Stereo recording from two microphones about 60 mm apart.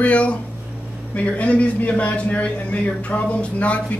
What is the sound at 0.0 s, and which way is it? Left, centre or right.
A man's voice, left.